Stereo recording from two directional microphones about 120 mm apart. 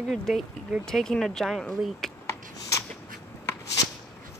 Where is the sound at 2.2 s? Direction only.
25° left (ahead or behind).